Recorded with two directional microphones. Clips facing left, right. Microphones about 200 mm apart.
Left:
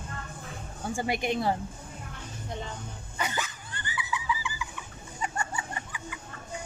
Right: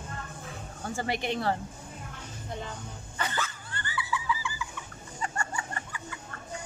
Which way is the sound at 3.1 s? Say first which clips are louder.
Left 1 dB; 15° left (ahead or behind).